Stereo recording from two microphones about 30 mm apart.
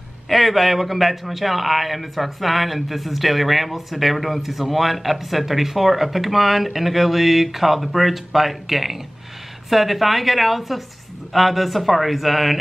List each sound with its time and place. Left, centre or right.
0.3 s a man's voice: centre